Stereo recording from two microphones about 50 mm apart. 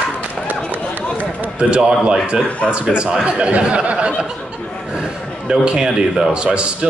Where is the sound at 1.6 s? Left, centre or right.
Centre.